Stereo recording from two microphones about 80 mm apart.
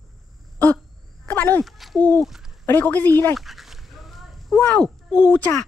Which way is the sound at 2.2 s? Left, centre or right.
Centre.